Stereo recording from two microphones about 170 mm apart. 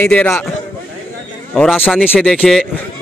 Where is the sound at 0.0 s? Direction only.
10° left (ahead or behind).